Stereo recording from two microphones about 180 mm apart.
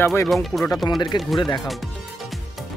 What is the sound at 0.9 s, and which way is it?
Speech, 25° left (ahead or behind).